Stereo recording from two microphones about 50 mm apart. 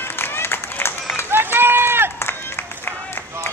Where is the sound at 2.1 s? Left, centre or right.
Left.